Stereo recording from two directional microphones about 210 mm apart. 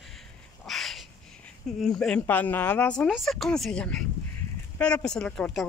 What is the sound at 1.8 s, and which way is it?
Speech, centre (ahead or behind).